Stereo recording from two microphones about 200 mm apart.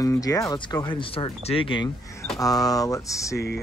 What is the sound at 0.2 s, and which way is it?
Speech, 15° left (ahead or behind).